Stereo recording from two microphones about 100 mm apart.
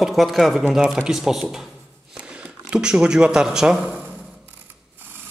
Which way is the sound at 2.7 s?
10° right (ahead or behind).